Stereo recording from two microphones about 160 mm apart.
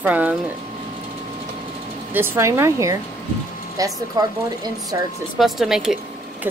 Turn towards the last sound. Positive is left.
turn(degrees=-5)  # may be behind; listen again after turning